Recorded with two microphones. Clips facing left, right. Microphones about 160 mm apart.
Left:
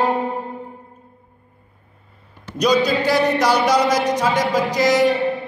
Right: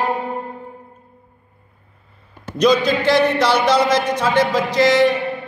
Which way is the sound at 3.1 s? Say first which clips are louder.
Right 4 dB; 10° left (ahead or behind).